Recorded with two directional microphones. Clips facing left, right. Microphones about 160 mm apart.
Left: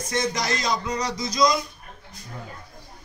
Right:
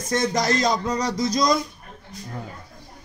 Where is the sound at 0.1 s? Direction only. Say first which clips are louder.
Right 4 dB; 45° right (ahead or behind).